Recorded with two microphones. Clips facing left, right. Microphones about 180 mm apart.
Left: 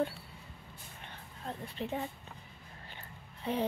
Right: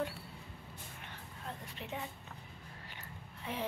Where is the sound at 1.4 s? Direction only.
35° left (ahead or behind).